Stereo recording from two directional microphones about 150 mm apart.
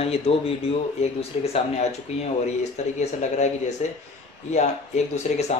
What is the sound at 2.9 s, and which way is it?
Speech, 50° left (ahead or behind).